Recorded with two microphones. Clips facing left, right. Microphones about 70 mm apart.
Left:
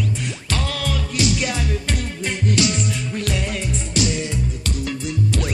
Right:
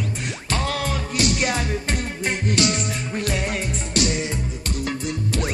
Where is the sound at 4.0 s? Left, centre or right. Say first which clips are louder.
Even; centre.